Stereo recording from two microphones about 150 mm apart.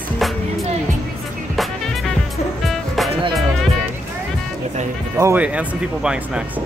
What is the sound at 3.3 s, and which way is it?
Music, centre (ahead or behind).